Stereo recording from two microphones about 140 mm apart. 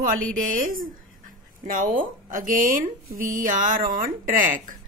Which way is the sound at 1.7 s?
75° right (ahead or behind).